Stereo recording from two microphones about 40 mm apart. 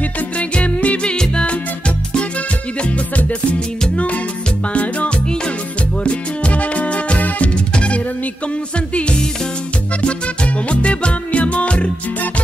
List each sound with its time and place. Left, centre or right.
0.4 s music: left
1.0 s music: left
3.9 s music: left
6.0 s music: left